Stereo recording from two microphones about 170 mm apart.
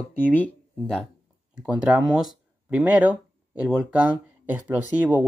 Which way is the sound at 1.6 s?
5° right (ahead or behind).